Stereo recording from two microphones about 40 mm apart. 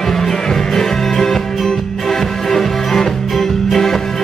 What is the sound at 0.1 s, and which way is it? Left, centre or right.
Music, centre.